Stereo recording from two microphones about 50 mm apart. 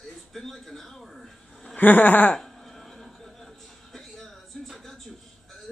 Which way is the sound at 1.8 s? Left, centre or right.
Left.